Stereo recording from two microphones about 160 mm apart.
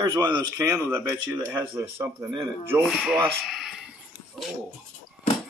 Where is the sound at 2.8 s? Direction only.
Centre (ahead or behind).